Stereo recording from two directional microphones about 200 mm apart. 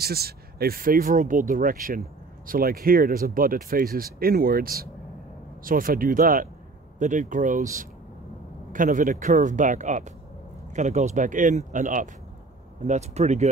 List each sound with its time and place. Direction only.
0.0 s speech: 50° right (ahead or behind); by 13.5 s 35° right (ahead or behind)